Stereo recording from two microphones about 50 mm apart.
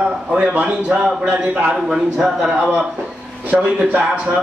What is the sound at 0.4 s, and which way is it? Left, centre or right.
Speech, right.